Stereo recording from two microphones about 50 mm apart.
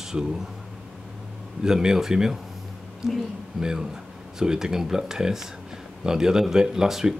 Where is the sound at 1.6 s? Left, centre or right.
Centre.